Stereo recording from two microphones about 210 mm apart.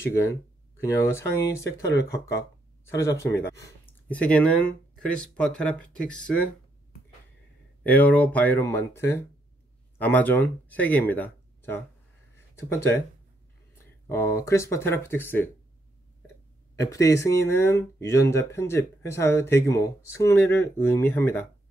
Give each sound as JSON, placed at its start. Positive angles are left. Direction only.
{"t": 0.0, "sound": "speech", "side_deg": 10}
{"t": 7.8, "sound": "speech", "side_deg": 5}
{"t": 14.0, "sound": "speech", "side_deg": 10}
{"t": 16.7, "sound": "speech", "side_deg": 15}